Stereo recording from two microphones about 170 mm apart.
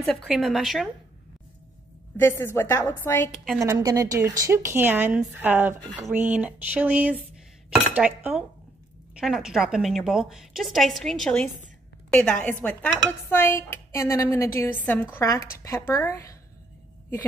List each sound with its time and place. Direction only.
0.0 s a woman's voice: 5° left (ahead or behind)
2.1 s speech: 15° left (ahead or behind)
3.5 s a woman's voice: 20° right (ahead or behind); by 16.3 s 20° left (ahead or behind)